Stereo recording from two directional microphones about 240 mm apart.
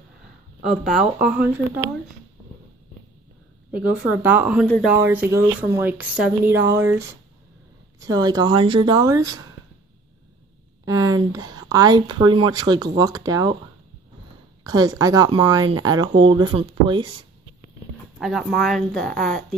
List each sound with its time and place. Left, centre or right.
0.7 s speech: centre
3.7 s speech: centre
4.6 s speech: centre
4.9 s speech: centre
10.9 s speech: centre
14.6 s speech: centre
18.2 s speech: centre